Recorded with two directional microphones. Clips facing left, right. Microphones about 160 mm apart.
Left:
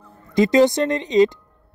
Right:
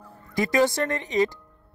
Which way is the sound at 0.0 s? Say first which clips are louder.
Left 9 dB; 20° left (ahead or behind).